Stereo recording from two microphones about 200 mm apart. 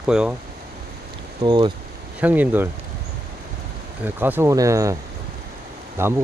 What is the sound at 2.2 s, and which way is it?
Speech, 10° right (ahead or behind).